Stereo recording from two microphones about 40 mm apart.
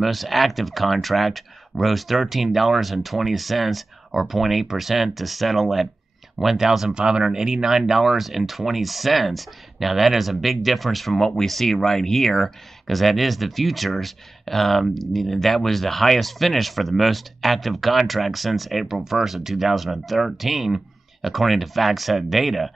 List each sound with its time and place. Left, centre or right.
0.0 s speech: centre
6.9 s speech: right; by 11.1 s centre
11.1 s speech: centre